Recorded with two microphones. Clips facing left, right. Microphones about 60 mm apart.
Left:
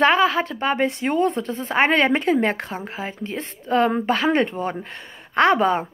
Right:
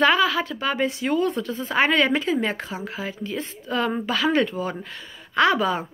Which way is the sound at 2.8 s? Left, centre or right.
Left.